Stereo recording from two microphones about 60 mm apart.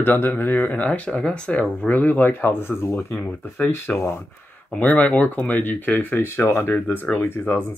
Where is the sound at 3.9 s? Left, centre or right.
Left.